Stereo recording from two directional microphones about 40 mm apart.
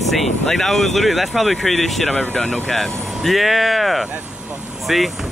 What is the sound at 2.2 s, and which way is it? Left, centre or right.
Speech, centre.